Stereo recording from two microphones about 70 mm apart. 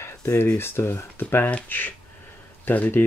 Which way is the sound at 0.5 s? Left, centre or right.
Left.